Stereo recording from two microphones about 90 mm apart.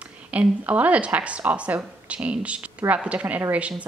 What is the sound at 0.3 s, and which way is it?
Speech, 15° right (ahead or behind).